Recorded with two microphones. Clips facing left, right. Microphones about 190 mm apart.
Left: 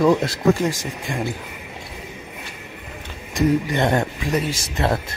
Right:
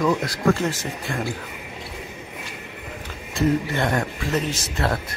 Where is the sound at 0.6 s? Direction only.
15° left (ahead or behind).